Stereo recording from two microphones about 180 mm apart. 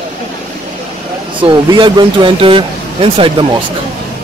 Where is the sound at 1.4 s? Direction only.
25° right (ahead or behind).